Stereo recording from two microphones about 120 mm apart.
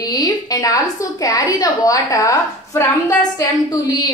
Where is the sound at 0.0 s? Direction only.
30° left (ahead or behind).